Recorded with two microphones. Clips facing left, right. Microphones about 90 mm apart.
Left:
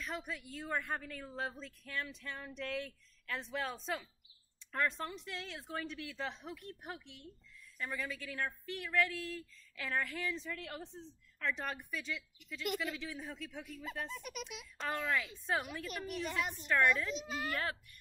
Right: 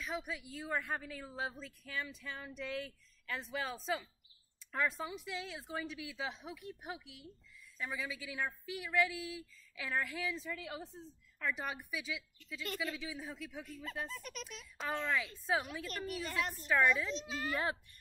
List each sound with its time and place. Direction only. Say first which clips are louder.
0.0 s speech: right 1 dB; centre (ahead or behind)
17.5 s a child's voice: right 3 dB; 20° right (ahead or behind)